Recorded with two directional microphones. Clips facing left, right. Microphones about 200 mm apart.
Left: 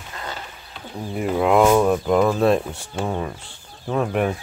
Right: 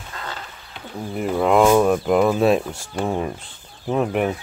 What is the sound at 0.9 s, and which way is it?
Speech, centre (ahead or behind).